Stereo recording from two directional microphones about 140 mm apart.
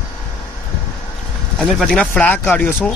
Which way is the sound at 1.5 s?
Centre (ahead or behind).